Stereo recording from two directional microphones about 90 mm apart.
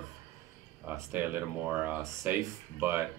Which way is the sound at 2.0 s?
35° right (ahead or behind).